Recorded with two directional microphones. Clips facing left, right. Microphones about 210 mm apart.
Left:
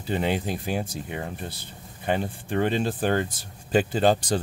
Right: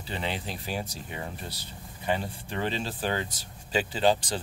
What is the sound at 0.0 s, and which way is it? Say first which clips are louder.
Speech: left 8 dB; 50° left (ahead or behind).